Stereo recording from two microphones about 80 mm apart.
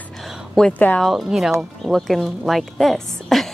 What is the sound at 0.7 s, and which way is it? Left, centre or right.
Speech, left.